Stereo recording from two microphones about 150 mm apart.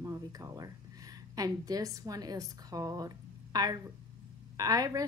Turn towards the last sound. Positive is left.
turn(degrees=-25)  # may be behind; listen again after turning